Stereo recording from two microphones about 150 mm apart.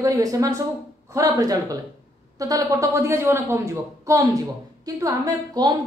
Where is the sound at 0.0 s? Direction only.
20° right (ahead or behind).